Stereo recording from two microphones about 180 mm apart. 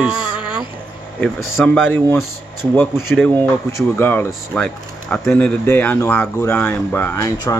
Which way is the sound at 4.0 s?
15° left (ahead or behind).